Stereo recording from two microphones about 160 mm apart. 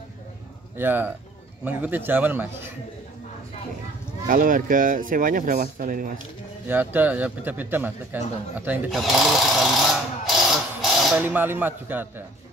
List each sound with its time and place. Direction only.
0.7 s a man's voice: 10° right (ahead or behind)
4.3 s speech: 55° right (ahead or behind)
6.7 s a man's voice: 10° right (ahead or behind)
11.2 s a man's voice: 10° right (ahead or behind)